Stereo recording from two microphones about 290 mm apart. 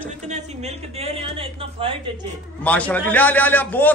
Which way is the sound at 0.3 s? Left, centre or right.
Right.